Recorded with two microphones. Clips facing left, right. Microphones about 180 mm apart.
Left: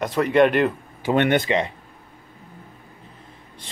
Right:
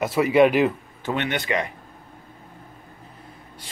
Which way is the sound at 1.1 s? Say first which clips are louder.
Left 8 dB; 50° left (ahead or behind).